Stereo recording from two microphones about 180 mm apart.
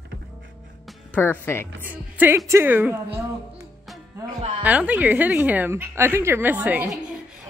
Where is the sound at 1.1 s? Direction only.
10° left (ahead or behind).